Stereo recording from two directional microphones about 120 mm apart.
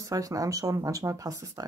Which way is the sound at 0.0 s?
30° right (ahead or behind).